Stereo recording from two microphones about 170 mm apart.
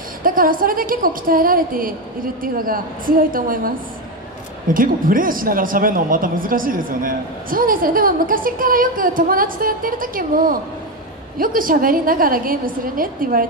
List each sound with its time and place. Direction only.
0.2 s a woman's voice: 55° right (ahead or behind)
4.7 s a woman's voice: 55° right (ahead or behind)